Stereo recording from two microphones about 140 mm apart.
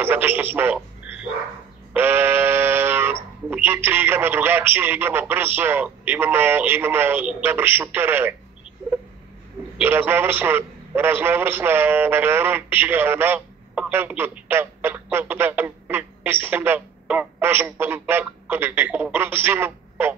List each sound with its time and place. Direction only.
0.0 s a man's voice: 15° right (ahead or behind)
2.0 s speech: 15° right (ahead or behind)
9.8 s a man's voice: 15° right (ahead or behind)